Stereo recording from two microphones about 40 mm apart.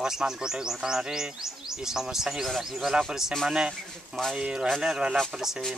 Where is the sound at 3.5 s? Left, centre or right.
Centre.